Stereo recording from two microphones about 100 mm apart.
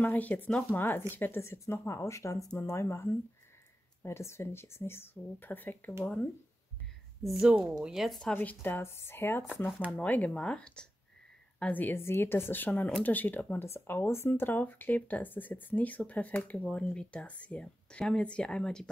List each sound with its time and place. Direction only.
0.0 s speech: 15° left (ahead or behind)
7.2 s a woman's voice: 5° right (ahead or behind)
8.3 s speech: 15° left (ahead or behind)